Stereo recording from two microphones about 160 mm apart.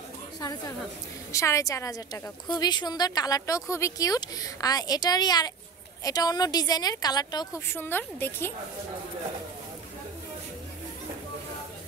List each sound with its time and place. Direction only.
0.4 s a woman's voice: 25° left (ahead or behind)